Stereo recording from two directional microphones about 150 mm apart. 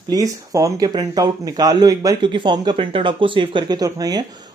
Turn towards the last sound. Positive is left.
turn(degrees=-25)  # may be behind; listen again after turning